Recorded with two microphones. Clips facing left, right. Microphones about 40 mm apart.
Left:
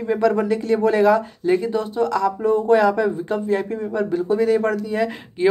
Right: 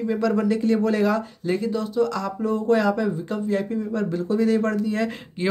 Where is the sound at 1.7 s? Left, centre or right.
Left.